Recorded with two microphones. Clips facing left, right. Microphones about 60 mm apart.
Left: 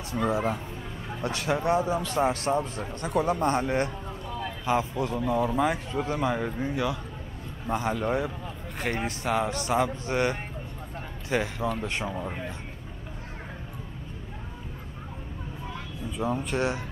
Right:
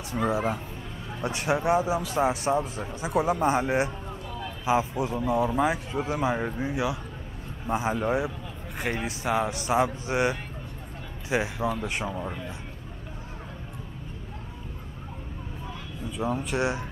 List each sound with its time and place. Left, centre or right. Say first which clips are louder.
0.1 s a man's voice: even; centre
1.2 s a man's voice: right 1 dB; right; by 12.3 s centre
16.3 s speech: even; centre
16.5 s a man's voice: right 1 dB; centre